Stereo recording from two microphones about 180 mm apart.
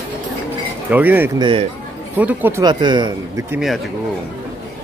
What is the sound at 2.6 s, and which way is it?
Speech, 25° right (ahead or behind).